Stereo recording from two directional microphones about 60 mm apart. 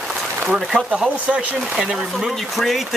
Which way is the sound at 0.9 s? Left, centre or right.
Centre.